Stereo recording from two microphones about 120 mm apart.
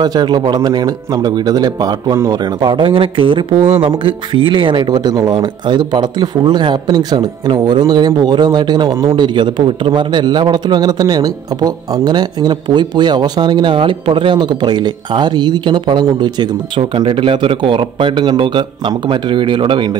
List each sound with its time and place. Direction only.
0.0 s a man's voice: 35° right (ahead or behind)